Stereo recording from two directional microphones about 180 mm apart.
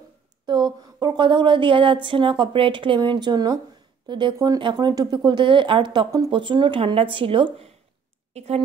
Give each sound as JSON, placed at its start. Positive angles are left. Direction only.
{"t": 0.5, "sound": "a woman's voice", "side_deg": -25}